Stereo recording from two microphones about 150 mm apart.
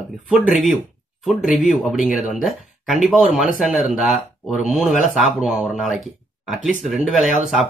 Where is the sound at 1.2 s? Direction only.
Centre (ahead or behind).